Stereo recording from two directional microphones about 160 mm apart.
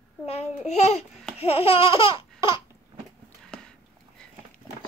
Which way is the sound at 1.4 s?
35° left (ahead or behind).